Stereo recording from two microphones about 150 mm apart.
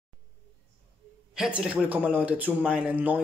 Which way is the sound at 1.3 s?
5° right (ahead or behind).